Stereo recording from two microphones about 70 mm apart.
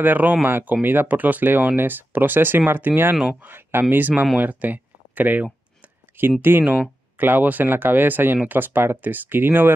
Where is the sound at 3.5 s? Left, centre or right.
Right.